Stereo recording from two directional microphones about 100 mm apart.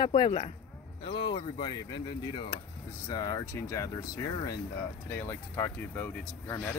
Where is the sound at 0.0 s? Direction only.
50° left (ahead or behind).